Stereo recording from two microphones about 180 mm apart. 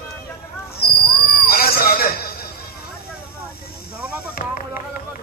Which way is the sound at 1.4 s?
55° left (ahead or behind).